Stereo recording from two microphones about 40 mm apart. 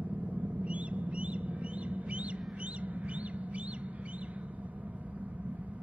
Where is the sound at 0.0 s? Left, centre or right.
Right.